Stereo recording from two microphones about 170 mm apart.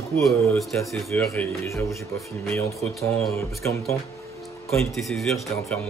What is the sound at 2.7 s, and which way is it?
Speech, centre (ahead or behind).